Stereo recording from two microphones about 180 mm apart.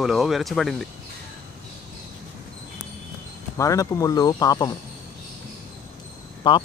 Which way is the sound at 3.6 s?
20° left (ahead or behind).